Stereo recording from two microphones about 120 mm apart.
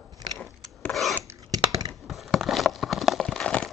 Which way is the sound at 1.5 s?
30° right (ahead or behind).